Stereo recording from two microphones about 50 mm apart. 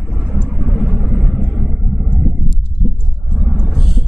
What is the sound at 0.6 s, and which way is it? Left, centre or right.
Vehicle, centre.